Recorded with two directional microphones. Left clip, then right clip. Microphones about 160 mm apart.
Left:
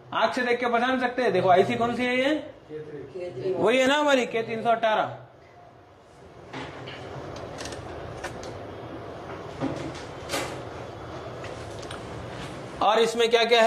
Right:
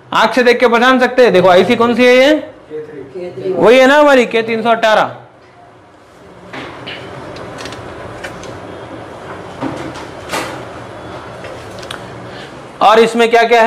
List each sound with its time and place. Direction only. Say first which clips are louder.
0.1 s a man's voice: right 14 dB; 55° right (ahead or behind)
3.6 s a man's voice: right 15 dB; 40° right (ahead or behind)
11.9 s a sound: right 11 dB; 55° right (ahead or behind)
12.7 s a man's voice: right 13 dB; 40° right (ahead or behind)